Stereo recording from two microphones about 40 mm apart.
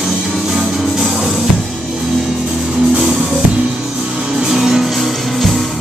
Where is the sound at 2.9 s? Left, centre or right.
Right; by 5.7 s centre.